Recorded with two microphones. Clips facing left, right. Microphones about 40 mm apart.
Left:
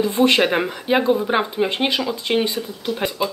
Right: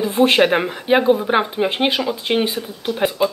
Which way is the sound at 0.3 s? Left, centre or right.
Centre.